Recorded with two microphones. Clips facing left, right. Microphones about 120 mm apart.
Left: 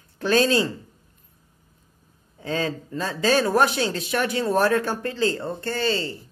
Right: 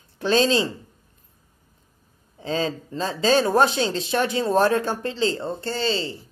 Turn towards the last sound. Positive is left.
turn(degrees=-25)  # may be behind; listen again after turning